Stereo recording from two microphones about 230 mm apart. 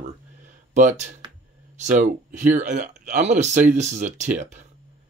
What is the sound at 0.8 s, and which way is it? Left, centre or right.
Speech, right.